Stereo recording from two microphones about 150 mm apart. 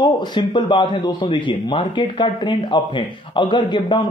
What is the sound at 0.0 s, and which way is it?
A man's voice, 30° left (ahead or behind).